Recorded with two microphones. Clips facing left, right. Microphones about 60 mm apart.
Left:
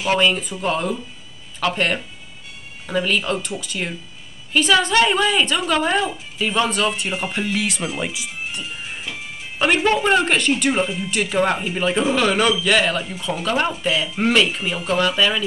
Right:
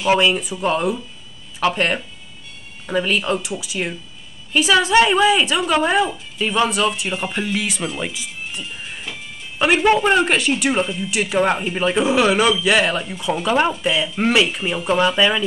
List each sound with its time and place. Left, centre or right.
0.1 s speech: centre
7.9 s music: centre
10.0 s speech: centre
14.9 s speech: centre